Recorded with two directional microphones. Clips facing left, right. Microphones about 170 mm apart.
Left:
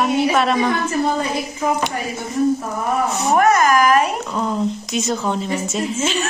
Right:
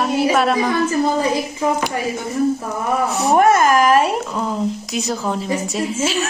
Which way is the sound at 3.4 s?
30° right (ahead or behind).